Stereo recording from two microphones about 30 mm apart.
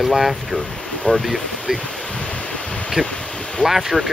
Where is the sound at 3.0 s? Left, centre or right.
Right.